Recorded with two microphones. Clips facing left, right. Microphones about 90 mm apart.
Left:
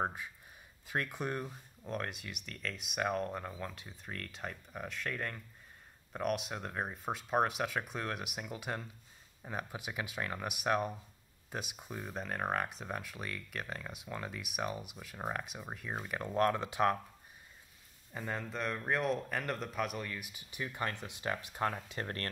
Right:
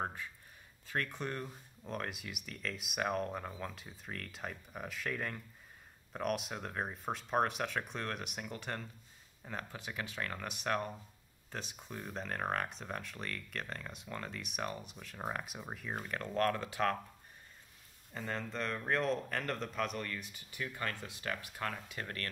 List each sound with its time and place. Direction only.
0.0 s speech: 15° left (ahead or behind)
1.9 s speech: centre (ahead or behind); by 17.0 s 15° left (ahead or behind)
18.1 s speech: 5° left (ahead or behind); by 22.3 s 35° left (ahead or behind)